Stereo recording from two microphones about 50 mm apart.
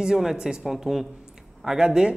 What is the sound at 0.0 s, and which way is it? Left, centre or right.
Speech, centre.